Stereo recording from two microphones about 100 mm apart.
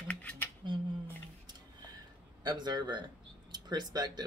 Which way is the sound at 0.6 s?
50° right (ahead or behind).